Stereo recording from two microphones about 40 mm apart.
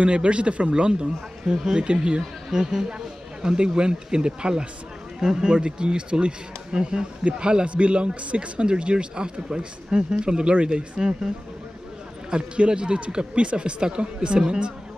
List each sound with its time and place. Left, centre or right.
0.0 s speech: right
1.5 s speech: centre
1.8 s speech: right
2.5 s speech: centre
5.2 s speech: centre
5.5 s speech: right